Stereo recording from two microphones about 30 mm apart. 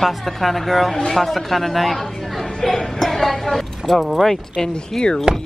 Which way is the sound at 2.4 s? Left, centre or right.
Centre.